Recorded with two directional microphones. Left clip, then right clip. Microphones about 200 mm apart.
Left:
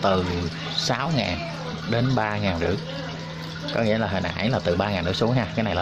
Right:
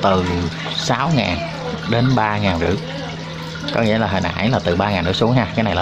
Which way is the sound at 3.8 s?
Centre (ahead or behind).